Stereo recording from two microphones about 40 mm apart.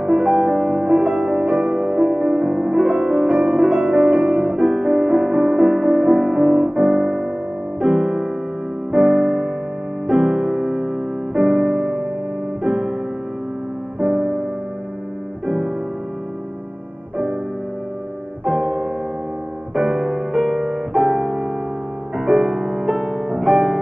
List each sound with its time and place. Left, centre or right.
0.0 s music: centre
1.1 s music: right
1.4 s music: centre
8.9 s music: centre
10.2 s music: centre
13.9 s music: centre
15.4 s keyboard: centre
18.4 s music: centre
19.7 s music: centre
20.6 s music: centre